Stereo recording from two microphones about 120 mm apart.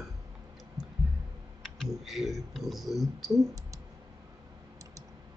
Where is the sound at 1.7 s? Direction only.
Centre (ahead or behind).